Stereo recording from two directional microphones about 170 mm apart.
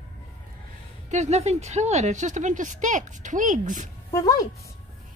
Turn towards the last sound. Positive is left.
turn(degrees=20)  # may be behind; listen again after turning